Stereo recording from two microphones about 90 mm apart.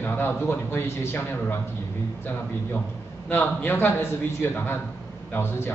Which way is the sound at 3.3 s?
20° left (ahead or behind).